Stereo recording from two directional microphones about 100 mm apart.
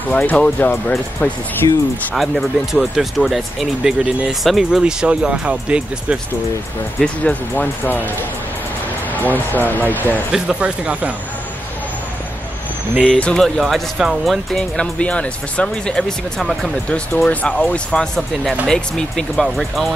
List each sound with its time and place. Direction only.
0.2 s speech: 15° left (ahead or behind)
1.6 s speech: 40° left (ahead or behind)
2.1 s speech: centre (ahead or behind)
7.5 s speech: 20° left (ahead or behind)
9.1 s speech: 20° left (ahead or behind)
10.3 s speech: 10° right (ahead or behind)
13.0 s speech: 10° left (ahead or behind)